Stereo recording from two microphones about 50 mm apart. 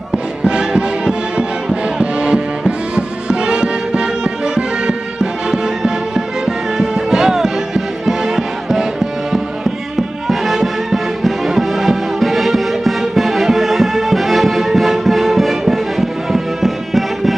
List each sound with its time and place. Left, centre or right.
0.1 s music: centre